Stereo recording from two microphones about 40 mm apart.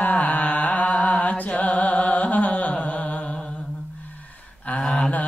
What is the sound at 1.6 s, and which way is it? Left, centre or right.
Music, left.